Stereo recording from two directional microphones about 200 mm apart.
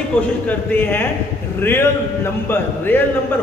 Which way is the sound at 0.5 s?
10° left (ahead or behind).